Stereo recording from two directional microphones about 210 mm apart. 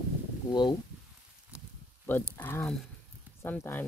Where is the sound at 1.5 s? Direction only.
5° right (ahead or behind).